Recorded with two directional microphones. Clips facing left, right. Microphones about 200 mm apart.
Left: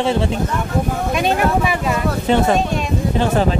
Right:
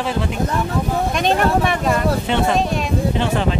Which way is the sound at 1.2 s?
5° left (ahead or behind).